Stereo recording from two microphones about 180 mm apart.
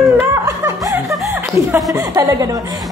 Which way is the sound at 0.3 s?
15° right (ahead or behind).